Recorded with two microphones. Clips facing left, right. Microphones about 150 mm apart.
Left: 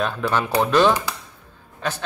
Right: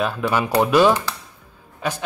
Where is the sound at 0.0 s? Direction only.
10° right (ahead or behind).